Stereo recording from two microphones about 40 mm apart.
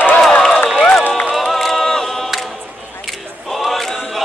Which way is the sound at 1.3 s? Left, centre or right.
Centre.